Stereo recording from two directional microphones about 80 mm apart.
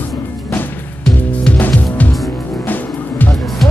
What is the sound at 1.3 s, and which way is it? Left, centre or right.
Music, centre.